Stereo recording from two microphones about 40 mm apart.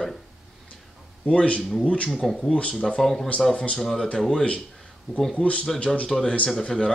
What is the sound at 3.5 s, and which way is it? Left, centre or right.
Speech, left.